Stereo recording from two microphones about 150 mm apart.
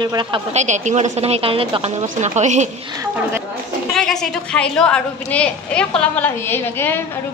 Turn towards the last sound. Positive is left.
turn(degrees=15)  # may be behind; listen again after turning